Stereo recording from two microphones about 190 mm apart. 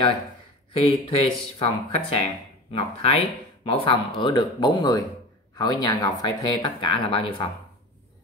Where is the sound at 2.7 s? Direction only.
30° left (ahead or behind).